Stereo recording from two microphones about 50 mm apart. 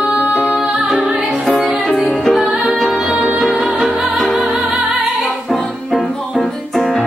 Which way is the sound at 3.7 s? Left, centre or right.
Centre.